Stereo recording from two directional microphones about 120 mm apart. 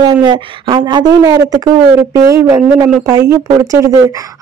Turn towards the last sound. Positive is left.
turn(degrees=-25)  # may be behind; listen again after turning